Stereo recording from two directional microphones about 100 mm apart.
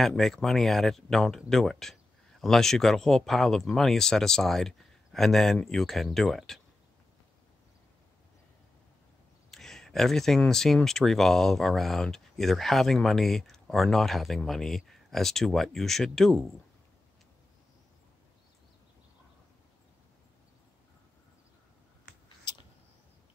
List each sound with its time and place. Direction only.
0.0 s speech: 5° left (ahead or behind)
9.5 s speech: 5° left (ahead or behind)